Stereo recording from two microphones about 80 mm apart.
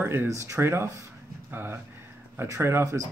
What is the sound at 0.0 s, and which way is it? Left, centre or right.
Speech, right.